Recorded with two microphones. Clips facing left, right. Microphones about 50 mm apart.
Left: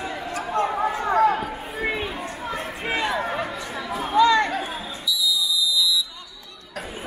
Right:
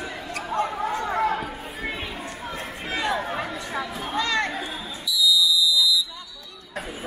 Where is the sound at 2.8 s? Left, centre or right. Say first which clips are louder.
Left 1 dB; centre.